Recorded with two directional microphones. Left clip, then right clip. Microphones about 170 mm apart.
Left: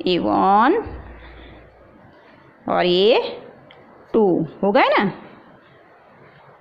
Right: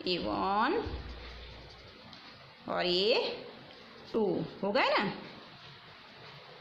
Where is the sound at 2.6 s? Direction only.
40° left (ahead or behind).